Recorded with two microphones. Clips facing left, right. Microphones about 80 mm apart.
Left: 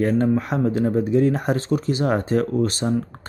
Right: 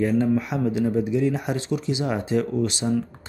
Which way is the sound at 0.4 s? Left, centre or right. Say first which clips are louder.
Left 2 dB; left.